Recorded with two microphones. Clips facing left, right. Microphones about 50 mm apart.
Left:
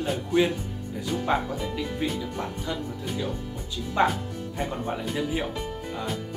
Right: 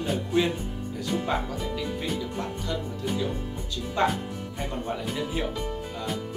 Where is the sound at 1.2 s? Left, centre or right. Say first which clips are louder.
Left 2 dB; centre.